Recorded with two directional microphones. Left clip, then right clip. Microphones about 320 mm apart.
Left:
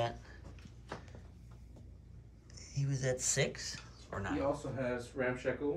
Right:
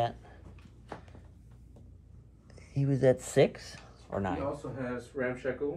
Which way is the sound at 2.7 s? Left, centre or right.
Centre.